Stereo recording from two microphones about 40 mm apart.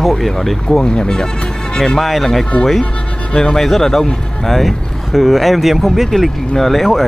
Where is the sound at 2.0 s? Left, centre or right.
Centre.